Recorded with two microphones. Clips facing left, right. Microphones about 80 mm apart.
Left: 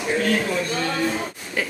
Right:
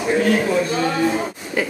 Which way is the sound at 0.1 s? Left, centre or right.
Centre.